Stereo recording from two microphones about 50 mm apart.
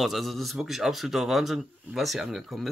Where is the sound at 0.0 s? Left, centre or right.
Centre.